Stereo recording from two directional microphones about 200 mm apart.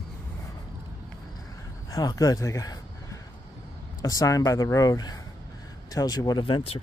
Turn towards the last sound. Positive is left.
turn(degrees=25)  # may be behind; listen again after turning